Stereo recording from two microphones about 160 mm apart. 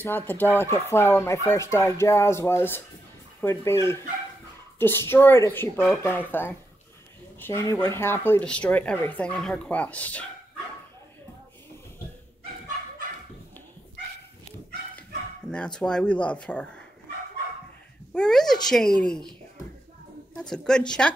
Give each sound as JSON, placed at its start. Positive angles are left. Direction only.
{"t": 0.0, "sound": "speech", "side_deg": 10}
{"t": 15.5, "sound": "speech", "side_deg": 5}
{"t": 18.1, "sound": "a child's voice", "side_deg": 5}
{"t": 20.3, "sound": "a child's voice", "side_deg": 5}